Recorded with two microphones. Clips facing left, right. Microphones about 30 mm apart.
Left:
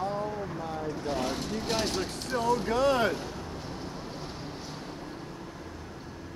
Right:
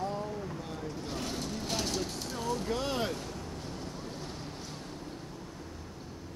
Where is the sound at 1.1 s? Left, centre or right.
Left.